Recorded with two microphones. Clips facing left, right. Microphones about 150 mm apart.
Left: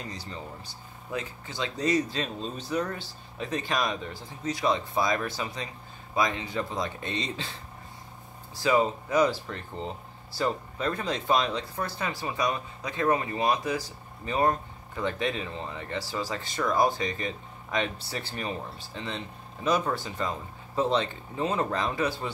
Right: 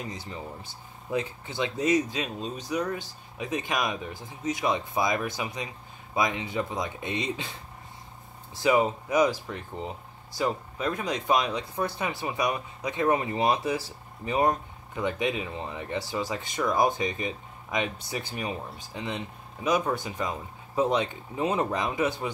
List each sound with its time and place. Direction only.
0.0 s speech: 20° right (ahead or behind)
8.5 s speech: 15° right (ahead or behind)
14.2 s speech: 15° right (ahead or behind)